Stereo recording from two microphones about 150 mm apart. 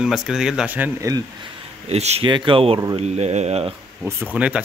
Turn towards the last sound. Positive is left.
turn(degrees=-10)  # may be behind; listen again after turning